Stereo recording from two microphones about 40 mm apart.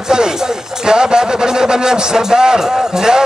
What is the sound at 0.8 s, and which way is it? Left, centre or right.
A man's voice, centre.